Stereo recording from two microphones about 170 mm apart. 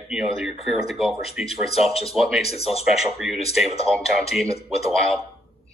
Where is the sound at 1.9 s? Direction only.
35° left (ahead or behind).